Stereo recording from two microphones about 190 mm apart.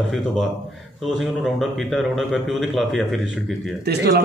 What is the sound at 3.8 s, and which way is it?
Speech, 60° right (ahead or behind).